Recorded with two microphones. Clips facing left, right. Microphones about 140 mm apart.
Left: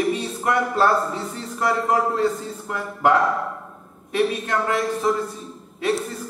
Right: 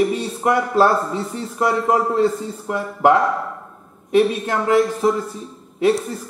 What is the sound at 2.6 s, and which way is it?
Speech, 25° right (ahead or behind).